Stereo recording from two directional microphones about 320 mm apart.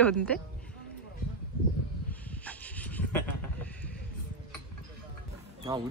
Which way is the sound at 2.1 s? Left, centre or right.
Centre.